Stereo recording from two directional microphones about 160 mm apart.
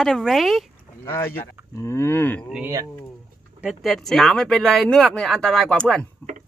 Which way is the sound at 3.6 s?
Centre (ahead or behind).